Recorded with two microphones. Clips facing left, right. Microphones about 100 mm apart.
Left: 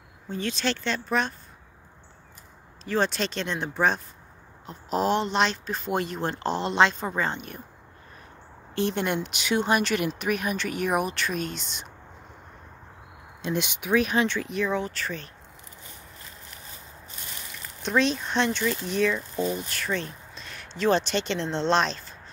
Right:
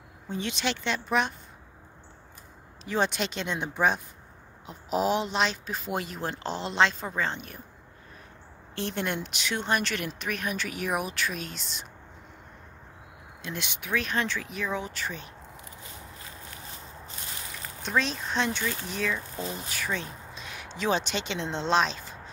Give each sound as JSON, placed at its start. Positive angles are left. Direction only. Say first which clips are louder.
{"t": 0.3, "sound": "speech", "louder": "left 2 dB", "side_deg": -20}
{"t": 2.8, "sound": "speech", "louder": "left 2 dB", "side_deg": -15}
{"t": 8.7, "sound": "speech", "louder": "left 5 dB", "side_deg": 0}
{"t": 13.4, "sound": "speech", "louder": "left 8 dB", "side_deg": 20}
{"t": 14.2, "sound": "speech", "louder": "left 6 dB", "side_deg": 0}
{"t": 17.8, "sound": "speech", "louder": "left 4 dB", "side_deg": 0}